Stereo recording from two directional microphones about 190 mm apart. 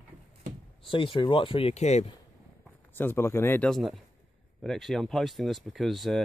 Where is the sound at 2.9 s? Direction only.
10° left (ahead or behind).